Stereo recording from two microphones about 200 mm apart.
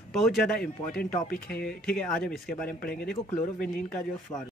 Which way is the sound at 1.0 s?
45° left (ahead or behind).